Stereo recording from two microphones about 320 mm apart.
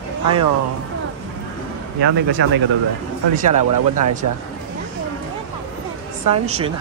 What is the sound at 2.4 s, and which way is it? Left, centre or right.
Speech, right.